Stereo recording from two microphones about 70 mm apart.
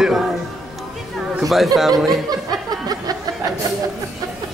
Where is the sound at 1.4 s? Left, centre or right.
Centre.